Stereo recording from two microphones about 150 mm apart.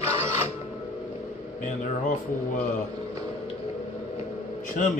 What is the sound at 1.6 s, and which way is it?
Speech, 60° left (ahead or behind).